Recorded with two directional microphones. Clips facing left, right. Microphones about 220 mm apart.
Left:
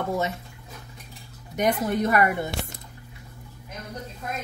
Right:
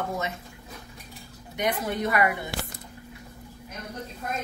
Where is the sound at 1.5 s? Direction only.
45° left (ahead or behind).